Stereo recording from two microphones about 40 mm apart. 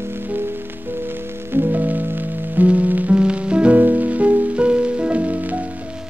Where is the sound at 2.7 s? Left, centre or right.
Right.